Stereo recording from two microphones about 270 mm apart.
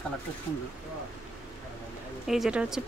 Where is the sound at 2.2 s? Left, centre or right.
Centre.